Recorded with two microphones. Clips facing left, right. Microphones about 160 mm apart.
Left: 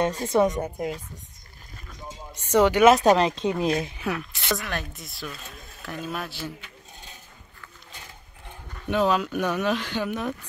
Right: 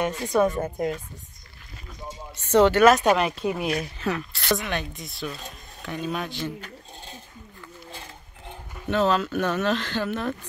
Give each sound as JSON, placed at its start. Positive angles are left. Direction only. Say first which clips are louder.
{"t": 0.0, "sound": "a woman's voice", "louder": "left 1 dB", "side_deg": 30}
{"t": 0.7, "sound": "speech", "louder": "right 3 dB", "side_deg": 0}
{"t": 2.3, "sound": "a sound", "louder": "right 2 dB", "side_deg": 10}
{"t": 3.0, "sound": "a woman's voice", "louder": "left 2 dB", "side_deg": 30}
{"t": 4.0, "sound": "speech", "louder": "right 2 dB", "side_deg": 10}
{"t": 8.8, "sound": "speech", "louder": "even", "side_deg": 10}